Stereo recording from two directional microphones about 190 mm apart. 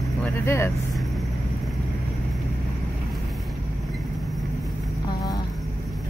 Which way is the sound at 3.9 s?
Centre (ahead or behind).